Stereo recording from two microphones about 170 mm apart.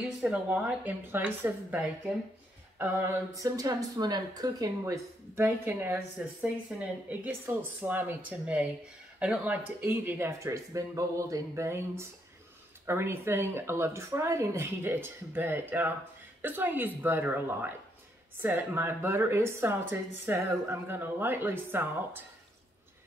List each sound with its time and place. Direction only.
0.2 s a woman's voice: 5° right (ahead or behind)
2.8 s a woman's voice: 15° right (ahead or behind)